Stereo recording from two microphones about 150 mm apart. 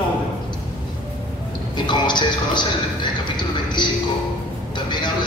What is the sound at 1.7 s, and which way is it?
Music, 30° left (ahead or behind).